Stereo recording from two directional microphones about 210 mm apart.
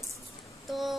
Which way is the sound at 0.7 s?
Centre (ahead or behind).